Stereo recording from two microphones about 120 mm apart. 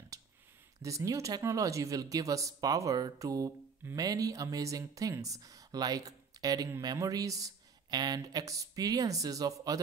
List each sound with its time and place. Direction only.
0.8 s speech: 25° right (ahead or behind)